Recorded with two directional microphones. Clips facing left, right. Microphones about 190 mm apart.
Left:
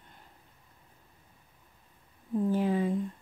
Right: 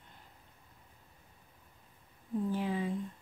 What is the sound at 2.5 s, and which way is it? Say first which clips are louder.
Speech: left 9 dB; 45° left (ahead or behind).